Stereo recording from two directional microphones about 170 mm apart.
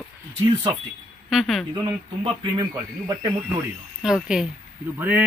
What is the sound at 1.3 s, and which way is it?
Speech, centre (ahead or behind).